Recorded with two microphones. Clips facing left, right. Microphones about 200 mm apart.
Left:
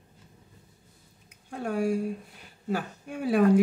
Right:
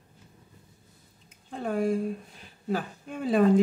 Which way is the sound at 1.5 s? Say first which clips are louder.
Even; 10° left (ahead or behind).